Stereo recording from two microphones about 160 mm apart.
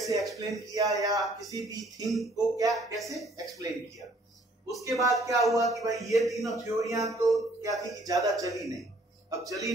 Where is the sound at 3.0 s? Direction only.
Centre (ahead or behind).